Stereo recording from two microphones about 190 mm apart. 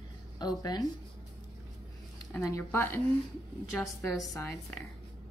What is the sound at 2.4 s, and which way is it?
Speech, 15° left (ahead or behind).